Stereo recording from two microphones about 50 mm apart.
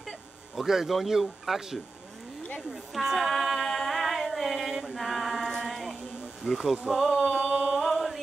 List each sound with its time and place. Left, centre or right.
0.6 s speech: centre
2.7 s female singing: centre
6.4 s speech: centre
7.3 s a sound: right
7.7 s chant: centre